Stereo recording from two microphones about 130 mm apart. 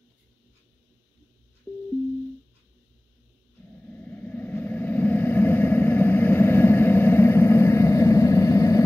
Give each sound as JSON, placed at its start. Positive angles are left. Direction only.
{"t": 3.9, "sound": "vehicle", "side_deg": 15}